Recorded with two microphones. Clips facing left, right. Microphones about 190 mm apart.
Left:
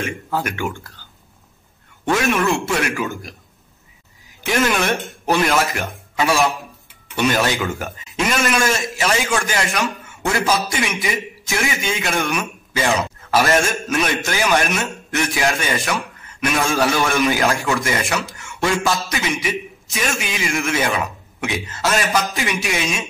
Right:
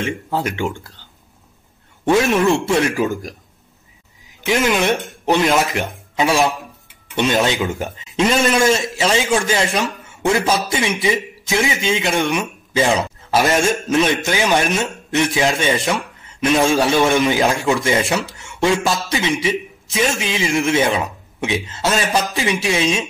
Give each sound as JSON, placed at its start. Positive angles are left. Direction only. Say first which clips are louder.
{"t": 0.0, "sound": "a man's voice", "louder": "right 2 dB", "side_deg": -25}
{"t": 2.3, "sound": "a man's voice", "louder": "right 4 dB", "side_deg": -30}
{"t": 4.5, "sound": "a man's voice", "louder": "right 2 dB", "side_deg": -15}